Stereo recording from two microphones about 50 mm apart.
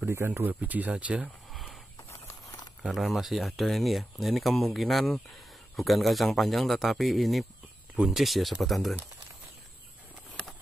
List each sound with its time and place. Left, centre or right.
0.4 s speech: right
1.5 s a sound: centre
2.9 s speech: centre
7.9 s speech: centre
8.2 s speech: centre